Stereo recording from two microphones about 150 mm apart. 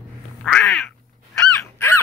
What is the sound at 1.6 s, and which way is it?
Honk, 15° left (ahead or behind).